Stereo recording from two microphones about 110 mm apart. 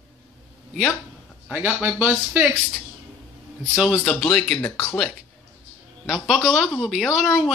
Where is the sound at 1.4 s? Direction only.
10° right (ahead or behind).